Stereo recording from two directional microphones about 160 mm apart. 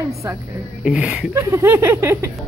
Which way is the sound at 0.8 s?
5° right (ahead or behind).